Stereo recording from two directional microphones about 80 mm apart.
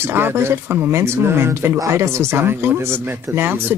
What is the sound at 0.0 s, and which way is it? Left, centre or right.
Speech, right.